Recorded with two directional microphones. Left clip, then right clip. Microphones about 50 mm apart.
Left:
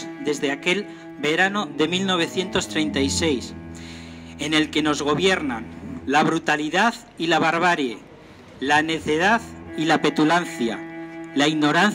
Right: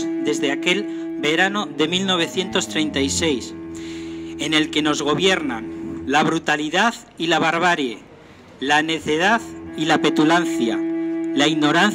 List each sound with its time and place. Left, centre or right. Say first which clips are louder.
0.0 s speech: right 4 dB; right